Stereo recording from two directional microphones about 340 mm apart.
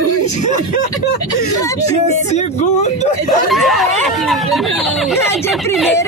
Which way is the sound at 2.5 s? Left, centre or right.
Centre.